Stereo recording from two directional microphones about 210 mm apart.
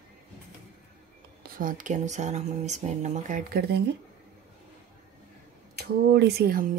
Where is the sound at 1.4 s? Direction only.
40° right (ahead or behind).